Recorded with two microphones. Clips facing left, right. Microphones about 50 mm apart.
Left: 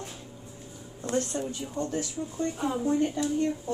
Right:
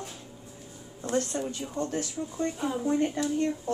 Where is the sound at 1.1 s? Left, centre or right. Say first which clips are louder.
Even; right.